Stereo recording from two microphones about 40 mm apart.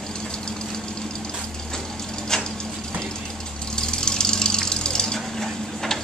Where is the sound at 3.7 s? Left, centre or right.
Centre.